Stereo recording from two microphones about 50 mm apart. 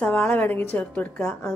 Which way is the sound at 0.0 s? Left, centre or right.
Left.